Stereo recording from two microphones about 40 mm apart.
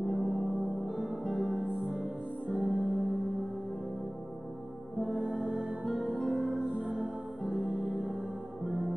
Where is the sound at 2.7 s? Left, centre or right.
Right.